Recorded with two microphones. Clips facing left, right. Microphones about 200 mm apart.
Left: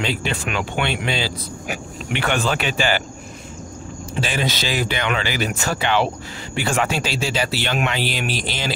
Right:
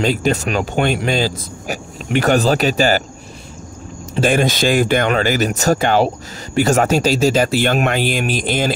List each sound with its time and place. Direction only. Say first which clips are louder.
0.0 s speech: right 7 dB; 45° right (ahead or behind)
4.2 s speech: right 9 dB; 50° right (ahead or behind)